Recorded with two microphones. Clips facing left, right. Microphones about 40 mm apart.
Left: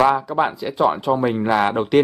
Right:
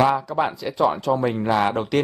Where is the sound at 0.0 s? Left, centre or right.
Centre.